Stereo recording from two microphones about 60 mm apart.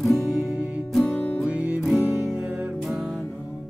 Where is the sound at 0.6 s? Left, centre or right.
Right.